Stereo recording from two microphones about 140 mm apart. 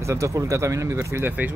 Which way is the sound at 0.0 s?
20° right (ahead or behind).